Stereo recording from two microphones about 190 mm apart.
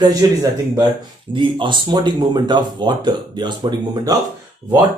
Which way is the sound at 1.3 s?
25° right (ahead or behind).